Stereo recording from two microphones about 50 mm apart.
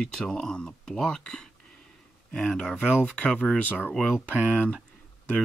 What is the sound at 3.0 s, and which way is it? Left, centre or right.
Speech, left.